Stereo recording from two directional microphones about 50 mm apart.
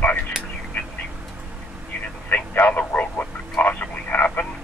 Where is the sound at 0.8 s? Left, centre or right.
Left.